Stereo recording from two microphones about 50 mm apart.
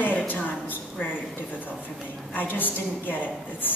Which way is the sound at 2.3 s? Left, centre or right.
Left.